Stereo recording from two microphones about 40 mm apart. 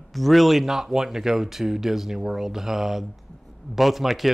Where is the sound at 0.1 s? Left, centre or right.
Centre.